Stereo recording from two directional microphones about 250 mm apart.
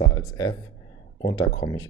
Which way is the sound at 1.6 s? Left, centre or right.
Centre.